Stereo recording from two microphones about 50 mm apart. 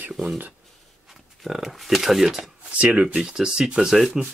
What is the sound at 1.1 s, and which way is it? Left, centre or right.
Speech, centre.